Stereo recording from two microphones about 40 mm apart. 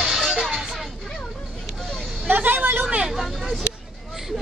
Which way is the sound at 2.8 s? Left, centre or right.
Right.